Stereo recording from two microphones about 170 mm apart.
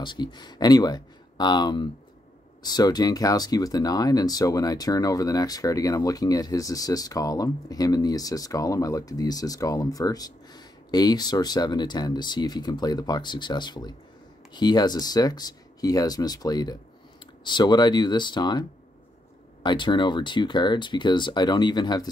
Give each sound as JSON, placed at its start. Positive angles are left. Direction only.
{"t": 0.0, "sound": "speech", "side_deg": 25}
{"t": 19.6, "sound": "speech", "side_deg": 25}